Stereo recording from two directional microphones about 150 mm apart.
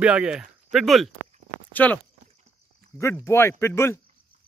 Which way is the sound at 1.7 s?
10° left (ahead or behind).